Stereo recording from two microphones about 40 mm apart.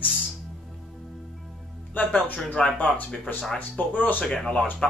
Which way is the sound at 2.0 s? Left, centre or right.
Left.